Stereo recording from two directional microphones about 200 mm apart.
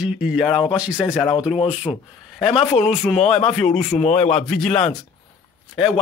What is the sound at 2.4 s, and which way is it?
Speech, 5° right (ahead or behind).